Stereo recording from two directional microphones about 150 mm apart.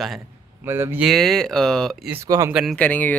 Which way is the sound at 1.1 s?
Centre (ahead or behind).